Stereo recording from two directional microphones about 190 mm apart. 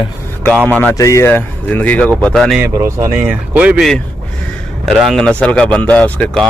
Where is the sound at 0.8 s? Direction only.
15° left (ahead or behind).